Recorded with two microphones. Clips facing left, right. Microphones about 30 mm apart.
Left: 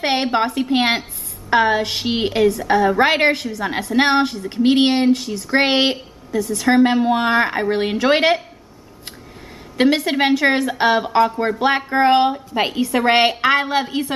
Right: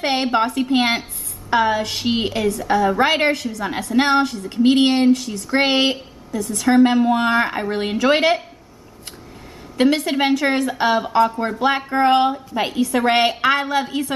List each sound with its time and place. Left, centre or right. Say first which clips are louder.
0.0 s a woman's voice: even; centre
9.8 s a woman's voice: left 1 dB; centre